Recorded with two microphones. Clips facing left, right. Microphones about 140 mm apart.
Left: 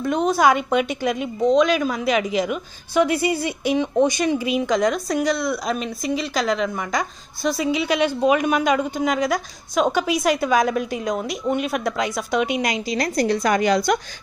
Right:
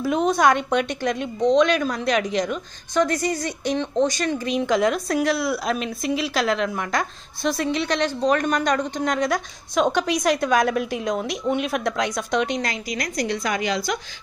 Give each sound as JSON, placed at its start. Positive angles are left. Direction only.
{"t": 0.0, "sound": "a woman's voice", "side_deg": 0}
{"t": 12.9, "sound": "a woman's voice", "side_deg": 30}